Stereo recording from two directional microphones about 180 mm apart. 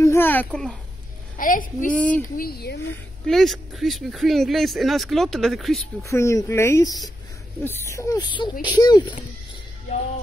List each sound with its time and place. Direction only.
0.0 s a sound: 15° left (ahead or behind)
1.4 s a woman's voice: 50° left (ahead or behind)
2.0 s speech: 10° left (ahead or behind)
2.3 s speech: 60° left (ahead or behind)
3.3 s speech: centre (ahead or behind)
6.0 s speech: 15° left (ahead or behind)